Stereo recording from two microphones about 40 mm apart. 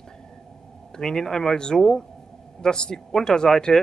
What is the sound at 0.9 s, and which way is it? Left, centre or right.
Speech, centre.